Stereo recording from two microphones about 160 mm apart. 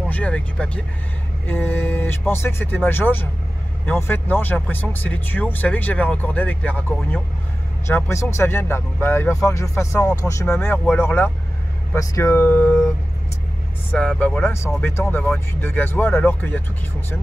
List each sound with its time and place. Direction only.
0.1 s speech: 5° left (ahead or behind)
13.9 s speech: 5° left (ahead or behind)